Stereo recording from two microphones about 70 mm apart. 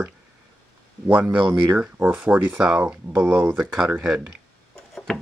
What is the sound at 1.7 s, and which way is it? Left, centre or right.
Speech, centre.